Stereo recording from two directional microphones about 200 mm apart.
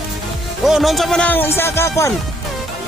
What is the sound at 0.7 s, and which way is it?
Speech, centre (ahead or behind).